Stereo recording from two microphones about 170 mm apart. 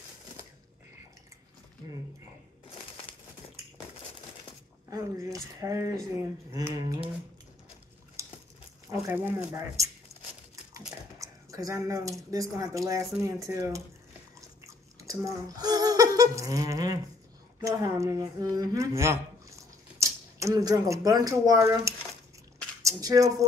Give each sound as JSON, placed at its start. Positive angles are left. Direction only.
{"t": 3.1, "sound": "a sound", "side_deg": 30}
{"t": 4.8, "sound": "speech", "side_deg": -20}
{"t": 8.2, "sound": "a sound", "side_deg": -15}
{"t": 8.9, "sound": "speech", "side_deg": -15}
{"t": 11.1, "sound": "speech", "side_deg": -20}
{"t": 15.0, "sound": "a woman's voice", "side_deg": -20}